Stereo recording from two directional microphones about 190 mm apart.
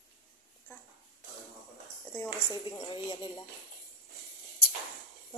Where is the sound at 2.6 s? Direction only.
25° left (ahead or behind).